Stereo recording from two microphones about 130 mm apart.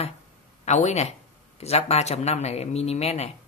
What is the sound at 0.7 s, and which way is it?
Speech, 65° left (ahead or behind).